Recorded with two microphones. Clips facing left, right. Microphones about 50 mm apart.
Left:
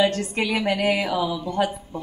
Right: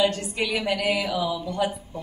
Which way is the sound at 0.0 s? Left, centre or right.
Left.